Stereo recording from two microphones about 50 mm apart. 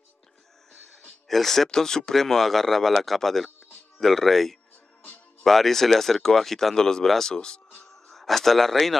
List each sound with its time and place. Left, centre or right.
0.7 s speech: centre
7.9 s speech: centre